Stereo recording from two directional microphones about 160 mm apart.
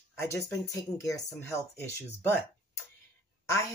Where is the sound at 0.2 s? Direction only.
20° left (ahead or behind).